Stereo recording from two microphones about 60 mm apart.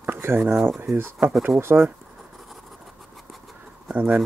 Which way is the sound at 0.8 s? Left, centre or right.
Right.